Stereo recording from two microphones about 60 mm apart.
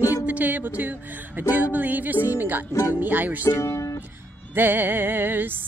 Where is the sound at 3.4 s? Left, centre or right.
Left.